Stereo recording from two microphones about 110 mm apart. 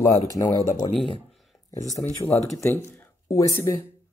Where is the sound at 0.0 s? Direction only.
30° left (ahead or behind).